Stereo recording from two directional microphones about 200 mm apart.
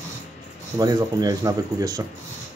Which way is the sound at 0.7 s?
20° right (ahead or behind).